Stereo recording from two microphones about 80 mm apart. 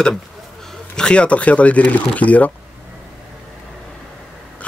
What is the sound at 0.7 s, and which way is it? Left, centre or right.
Speech, centre.